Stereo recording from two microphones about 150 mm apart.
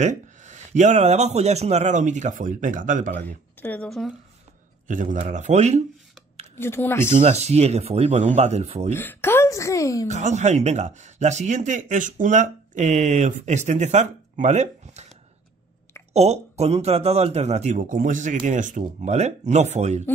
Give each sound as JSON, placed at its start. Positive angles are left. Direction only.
{"t": 0.0, "sound": "speech", "side_deg": -50}
{"t": 3.6, "sound": "speech", "side_deg": 10}
{"t": 4.8, "sound": "a man's voice", "side_deg": -60}
{"t": 6.6, "sound": "speech", "side_deg": 15}
{"t": 7.2, "sound": "speech", "side_deg": -45}
{"t": 8.9, "sound": "a woman's voice", "side_deg": 15}
{"t": 10.0, "sound": "speech", "side_deg": -50}
{"t": 16.1, "sound": "speech", "side_deg": -45}